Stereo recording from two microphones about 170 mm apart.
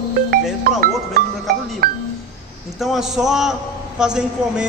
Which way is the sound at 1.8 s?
65° right (ahead or behind).